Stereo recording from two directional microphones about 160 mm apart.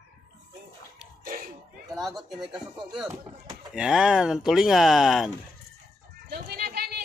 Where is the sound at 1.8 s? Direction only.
Centre (ahead or behind).